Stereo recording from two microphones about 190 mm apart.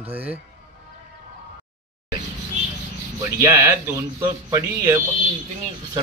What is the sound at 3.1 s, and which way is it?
Speech, 15° right (ahead or behind).